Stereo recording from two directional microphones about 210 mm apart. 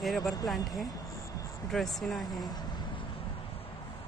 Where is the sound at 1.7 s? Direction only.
Centre (ahead or behind).